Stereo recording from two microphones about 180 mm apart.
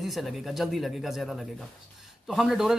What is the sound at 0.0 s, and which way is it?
Speech, centre (ahead or behind).